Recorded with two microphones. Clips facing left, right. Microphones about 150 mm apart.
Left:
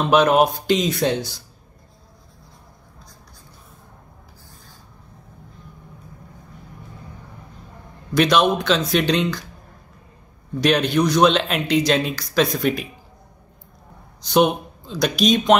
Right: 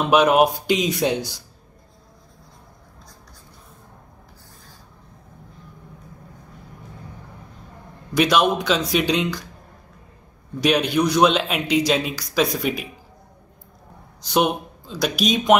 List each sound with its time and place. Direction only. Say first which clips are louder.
0.0 s speech: even; 10° right (ahead or behind)
8.1 s speech: left 1 dB; 10° right (ahead or behind)
10.6 s speech: left 1 dB; 10° right (ahead or behind)
14.2 s speech: left 3 dB; 5° right (ahead or behind)